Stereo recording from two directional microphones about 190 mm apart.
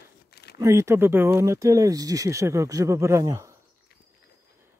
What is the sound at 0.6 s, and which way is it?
Speech, 15° right (ahead or behind).